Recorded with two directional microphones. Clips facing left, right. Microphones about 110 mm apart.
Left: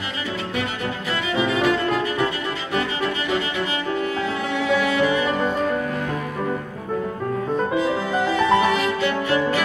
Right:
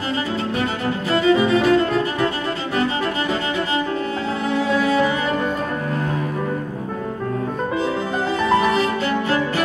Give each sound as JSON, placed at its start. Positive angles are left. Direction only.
{"t": 1.1, "sound": "music", "side_deg": -35}
{"t": 4.7, "sound": "cello", "side_deg": -35}
{"t": 7.8, "sound": "music", "side_deg": -35}